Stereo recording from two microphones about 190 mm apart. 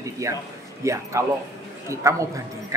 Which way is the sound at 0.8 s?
15° right (ahead or behind).